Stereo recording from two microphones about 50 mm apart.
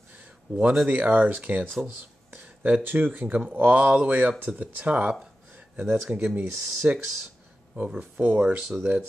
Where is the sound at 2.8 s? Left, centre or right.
Right.